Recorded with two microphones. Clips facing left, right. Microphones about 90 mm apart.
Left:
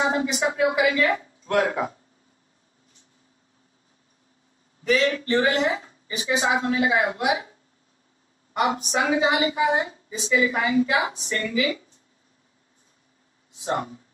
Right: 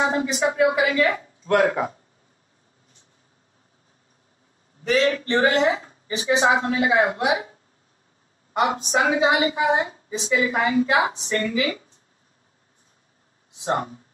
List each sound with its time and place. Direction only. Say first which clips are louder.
0.3 s a woman's voice: right 3 dB; 40° right (ahead or behind)
4.8 s a woman's voice: right 1 dB; 40° right (ahead or behind)
8.7 s a woman's voice: right 2 dB; 40° right (ahead or behind)
13.7 s a woman's voice: right 2 dB; 45° right (ahead or behind)